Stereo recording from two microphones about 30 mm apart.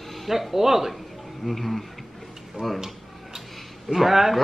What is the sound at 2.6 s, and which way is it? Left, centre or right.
Speech, centre.